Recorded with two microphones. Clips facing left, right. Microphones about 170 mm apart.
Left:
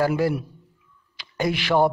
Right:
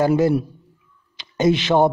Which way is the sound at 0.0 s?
25° right (ahead or behind).